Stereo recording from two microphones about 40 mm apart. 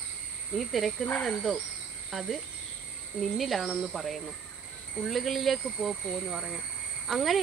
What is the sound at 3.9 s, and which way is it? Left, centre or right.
A woman's voice, centre.